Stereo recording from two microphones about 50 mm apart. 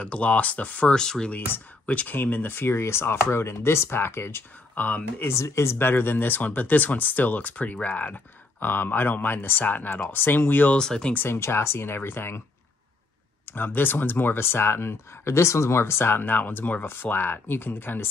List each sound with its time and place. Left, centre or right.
0.0 s speech: left
0.8 s speech: centre
1.3 s speech: left
2.7 s speech: left
4.7 s speech: left
5.3 s speech: left
5.8 s speech: left
8.5 s speech: left
10.1 s speech: left
10.7 s speech: centre
11.2 s speech: left
13.5 s speech: left